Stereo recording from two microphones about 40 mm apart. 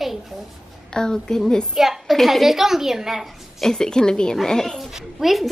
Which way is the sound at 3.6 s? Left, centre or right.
Centre.